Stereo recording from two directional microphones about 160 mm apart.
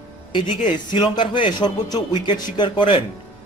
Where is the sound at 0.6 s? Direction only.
30° left (ahead or behind).